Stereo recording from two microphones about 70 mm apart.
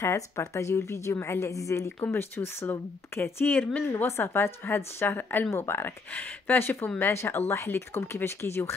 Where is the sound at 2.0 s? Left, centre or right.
Left.